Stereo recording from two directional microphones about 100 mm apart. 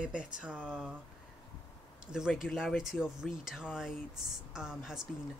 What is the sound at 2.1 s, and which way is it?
Speech, 5° right (ahead or behind).